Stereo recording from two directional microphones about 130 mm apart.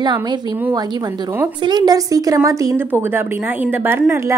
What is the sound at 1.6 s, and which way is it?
A woman's voice, 30° right (ahead or behind).